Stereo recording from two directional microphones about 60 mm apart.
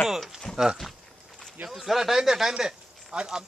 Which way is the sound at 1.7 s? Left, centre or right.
Centre.